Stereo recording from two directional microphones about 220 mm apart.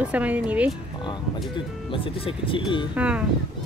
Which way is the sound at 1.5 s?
25° left (ahead or behind).